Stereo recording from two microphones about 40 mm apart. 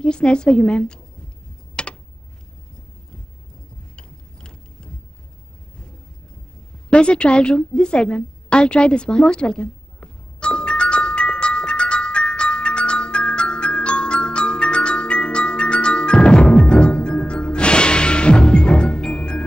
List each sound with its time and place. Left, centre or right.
0.0 s a woman's voice: left
1.8 s computer keyboard: left
3.9 s gears: left
6.9 s a sound: left